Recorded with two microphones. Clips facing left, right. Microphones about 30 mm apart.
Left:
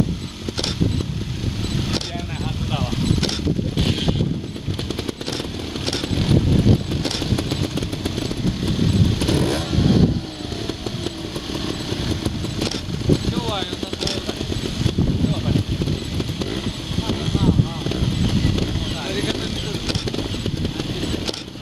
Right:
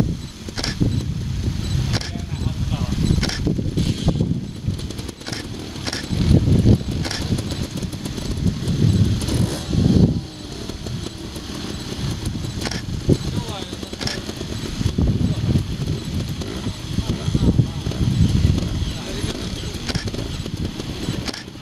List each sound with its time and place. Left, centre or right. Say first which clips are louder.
5.9 s vehicle: even; centre
11.1 s vehicle: left 4 dB; left
17.8 s vehicle: even; left